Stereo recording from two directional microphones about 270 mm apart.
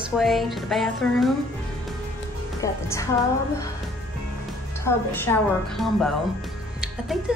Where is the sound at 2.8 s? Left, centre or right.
Centre.